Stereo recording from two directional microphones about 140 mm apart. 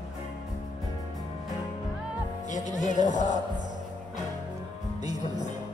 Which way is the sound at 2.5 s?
60° left (ahead or behind).